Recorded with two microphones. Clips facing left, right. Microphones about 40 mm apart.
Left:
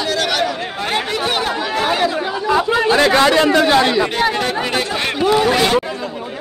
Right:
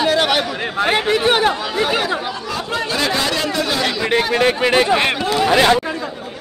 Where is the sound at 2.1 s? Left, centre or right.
Centre.